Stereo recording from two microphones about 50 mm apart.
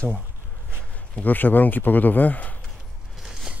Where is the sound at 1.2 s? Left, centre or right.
Left.